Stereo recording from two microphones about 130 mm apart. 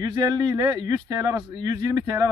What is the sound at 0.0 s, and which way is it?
Speech, 30° right (ahead or behind).